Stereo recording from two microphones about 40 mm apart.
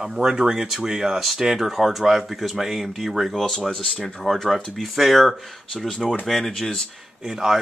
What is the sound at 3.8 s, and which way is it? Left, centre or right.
Speech, centre.